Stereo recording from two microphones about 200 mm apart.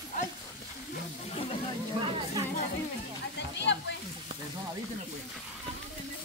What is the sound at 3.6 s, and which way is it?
Speech, 60° left (ahead or behind).